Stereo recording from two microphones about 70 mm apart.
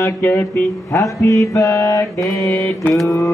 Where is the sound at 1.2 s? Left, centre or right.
Left.